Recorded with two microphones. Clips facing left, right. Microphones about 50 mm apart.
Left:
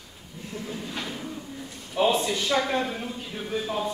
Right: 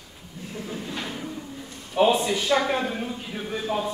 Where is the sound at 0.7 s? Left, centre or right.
Centre.